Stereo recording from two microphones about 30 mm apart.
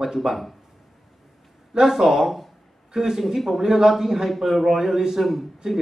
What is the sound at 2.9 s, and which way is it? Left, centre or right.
Speech, centre.